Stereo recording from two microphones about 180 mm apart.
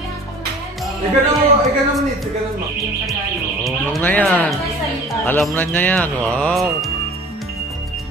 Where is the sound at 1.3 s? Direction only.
Centre (ahead or behind).